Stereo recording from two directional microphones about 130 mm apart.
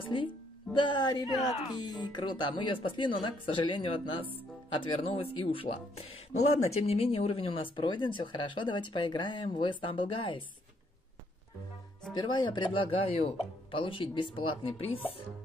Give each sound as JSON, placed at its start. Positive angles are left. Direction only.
{"t": 0.0, "sound": "speech", "side_deg": 40}
{"t": 12.1, "sound": "speech", "side_deg": 35}